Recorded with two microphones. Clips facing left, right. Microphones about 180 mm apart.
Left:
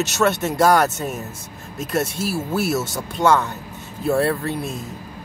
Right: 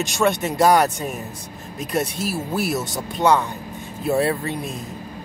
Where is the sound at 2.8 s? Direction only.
20° right (ahead or behind).